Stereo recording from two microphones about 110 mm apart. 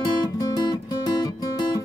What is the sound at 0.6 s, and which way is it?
Music, 40° left (ahead or behind).